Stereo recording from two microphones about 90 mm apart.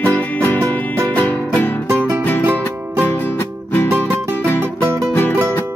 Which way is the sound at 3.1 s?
25° left (ahead or behind).